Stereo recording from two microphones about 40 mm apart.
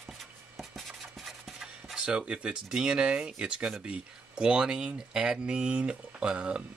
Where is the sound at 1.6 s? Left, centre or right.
Centre.